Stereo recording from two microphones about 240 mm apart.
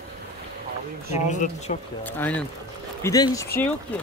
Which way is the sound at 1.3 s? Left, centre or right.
Left.